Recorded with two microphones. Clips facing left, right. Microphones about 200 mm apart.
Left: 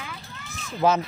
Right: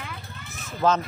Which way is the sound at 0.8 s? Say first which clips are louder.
Left 1 dB; 10° left (ahead or behind).